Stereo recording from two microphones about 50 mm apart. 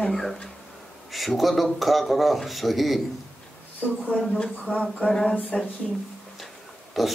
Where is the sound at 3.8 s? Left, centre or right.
Left.